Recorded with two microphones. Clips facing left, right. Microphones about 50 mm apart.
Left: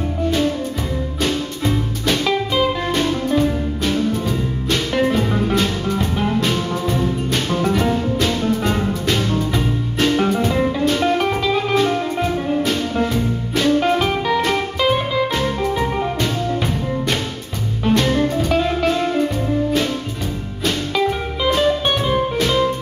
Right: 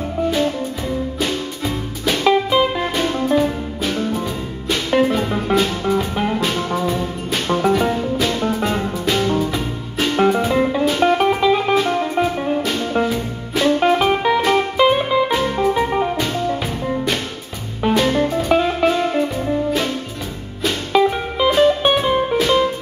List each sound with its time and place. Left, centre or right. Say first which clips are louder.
1.2 s music: left 2 dB; centre
9.2 s music: right 3 dB; centre
9.5 s music: left 3 dB; centre
10.1 s music: right 6 dB; centre
20.9 s music: right 3 dB; centre